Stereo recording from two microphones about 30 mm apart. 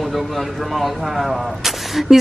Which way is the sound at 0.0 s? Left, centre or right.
Centre.